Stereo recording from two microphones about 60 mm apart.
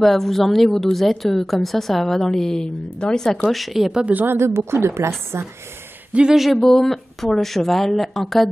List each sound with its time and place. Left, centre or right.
0.0 s a woman's voice: centre
3.4 s a woman's voice: centre
4.0 s a woman's voice: right
4.4 s a woman's voice: right
6.1 s a woman's voice: centre